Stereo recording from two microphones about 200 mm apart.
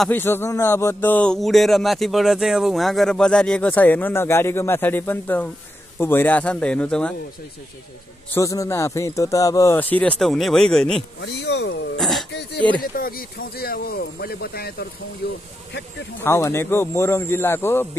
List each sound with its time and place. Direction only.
0.0 s speech: 10° left (ahead or behind)
8.4 s speech: 15° left (ahead or behind)
11.1 s speech: 60° left (ahead or behind)
12.0 s throat clearing: centre (ahead or behind)
12.3 s a sound: 60° left (ahead or behind)
12.9 s speech: 45° left (ahead or behind)
16.3 s speech: 15° left (ahead or behind)